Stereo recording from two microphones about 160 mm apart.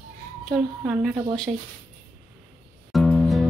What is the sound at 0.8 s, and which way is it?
Speech, centre (ahead or behind).